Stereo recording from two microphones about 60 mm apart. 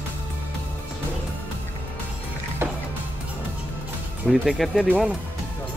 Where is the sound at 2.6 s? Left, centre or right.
Right.